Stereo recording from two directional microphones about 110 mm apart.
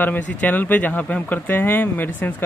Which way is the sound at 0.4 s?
15° left (ahead or behind).